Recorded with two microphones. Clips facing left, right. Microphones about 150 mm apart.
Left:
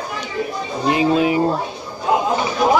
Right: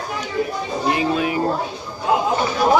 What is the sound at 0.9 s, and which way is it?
Speech, 20° left (ahead or behind).